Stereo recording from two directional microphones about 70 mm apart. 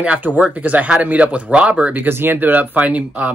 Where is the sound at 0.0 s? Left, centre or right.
Centre.